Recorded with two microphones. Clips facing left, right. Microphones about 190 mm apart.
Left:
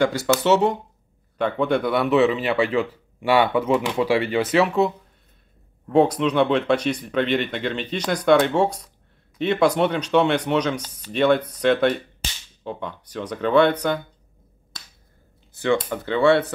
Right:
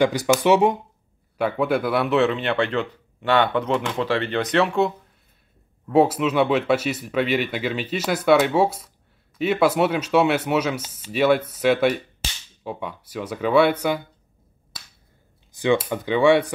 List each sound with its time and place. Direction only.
0.0 s speech: 15° right (ahead or behind)
15.5 s speech: 15° right (ahead or behind)